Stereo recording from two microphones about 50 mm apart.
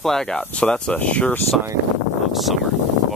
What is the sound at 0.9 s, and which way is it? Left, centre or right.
Speech, left.